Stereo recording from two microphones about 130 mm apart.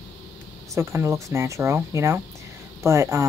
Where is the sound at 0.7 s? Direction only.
20° right (ahead or behind).